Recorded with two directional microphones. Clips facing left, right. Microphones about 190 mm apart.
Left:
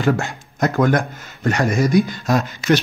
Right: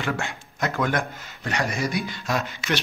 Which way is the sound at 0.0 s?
40° left (ahead or behind).